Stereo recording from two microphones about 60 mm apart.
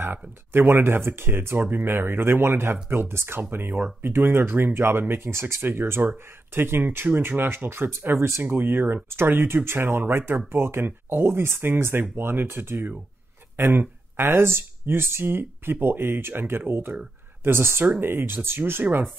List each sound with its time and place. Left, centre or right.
0.0 s speech: right